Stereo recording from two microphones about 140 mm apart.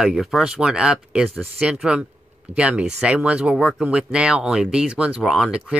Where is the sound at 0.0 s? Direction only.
5° right (ahead or behind).